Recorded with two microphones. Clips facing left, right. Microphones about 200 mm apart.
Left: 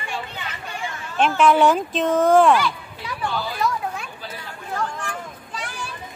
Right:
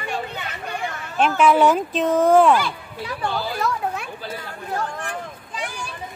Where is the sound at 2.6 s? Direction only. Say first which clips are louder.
Left 1 dB; 35° right (ahead or behind).